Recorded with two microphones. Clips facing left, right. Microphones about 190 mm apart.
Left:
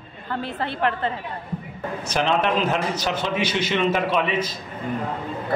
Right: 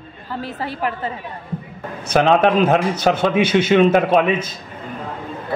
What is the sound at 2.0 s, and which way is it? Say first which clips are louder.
A man's voice: right 8 dB; 55° right (ahead or behind).